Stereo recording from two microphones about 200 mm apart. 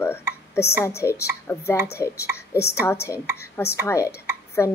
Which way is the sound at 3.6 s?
15° left (ahead or behind).